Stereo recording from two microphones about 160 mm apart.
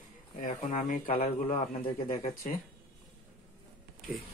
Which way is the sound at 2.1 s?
40° left (ahead or behind).